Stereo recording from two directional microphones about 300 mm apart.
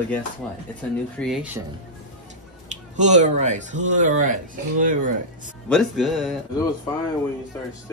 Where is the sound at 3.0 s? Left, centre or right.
Right.